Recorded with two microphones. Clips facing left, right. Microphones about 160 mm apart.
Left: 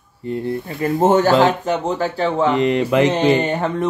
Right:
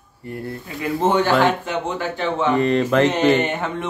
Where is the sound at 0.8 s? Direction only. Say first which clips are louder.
Left 3 dB; 45° left (ahead or behind).